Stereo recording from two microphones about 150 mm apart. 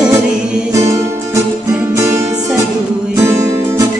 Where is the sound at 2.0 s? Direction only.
20° right (ahead or behind).